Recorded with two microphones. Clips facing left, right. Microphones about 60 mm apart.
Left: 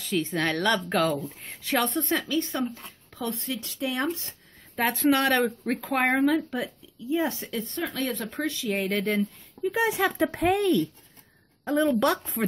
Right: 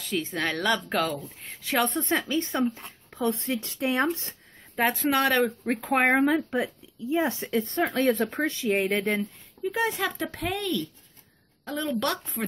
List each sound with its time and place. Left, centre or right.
0.0 s speech: centre
2.0 s speech: right
4.9 s speech: centre; by 7.6 s right
7.7 s speech: right; by 9.2 s centre
9.2 s speech: centre